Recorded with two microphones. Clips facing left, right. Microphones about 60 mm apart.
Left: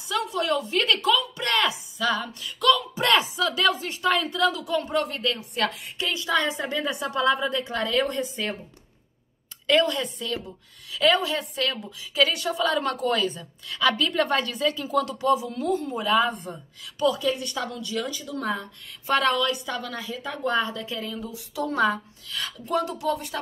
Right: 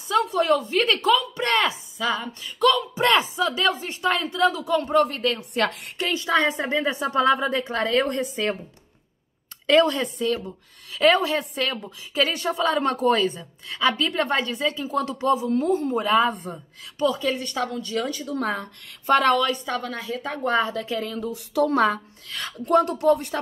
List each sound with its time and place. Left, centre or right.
0.1 s a woman's voice: right
6.6 s a woman's voice: right
9.7 s a woman's voice: right
19.3 s a woman's voice: right
20.2 s a woman's voice: right
21.0 s a woman's voice: right